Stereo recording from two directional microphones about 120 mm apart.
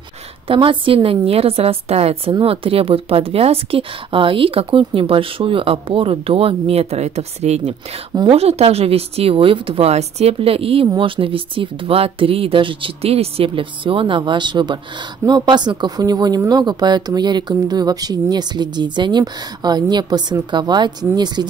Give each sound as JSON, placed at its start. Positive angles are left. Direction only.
{"t": 0.5, "sound": "speech", "side_deg": -45}